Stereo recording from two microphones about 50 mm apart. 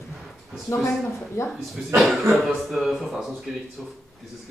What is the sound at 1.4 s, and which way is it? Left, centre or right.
Speech, left.